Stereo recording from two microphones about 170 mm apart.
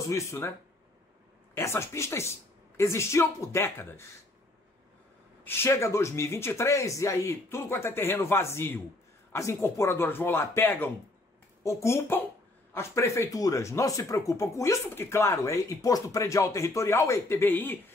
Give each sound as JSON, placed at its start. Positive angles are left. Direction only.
{"t": 0.0, "sound": "speech", "side_deg": 15}
{"t": 1.5, "sound": "speech", "side_deg": 15}
{"t": 5.4, "sound": "speech", "side_deg": 15}